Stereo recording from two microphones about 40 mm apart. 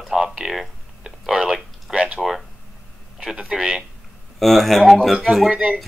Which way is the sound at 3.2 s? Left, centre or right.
Centre.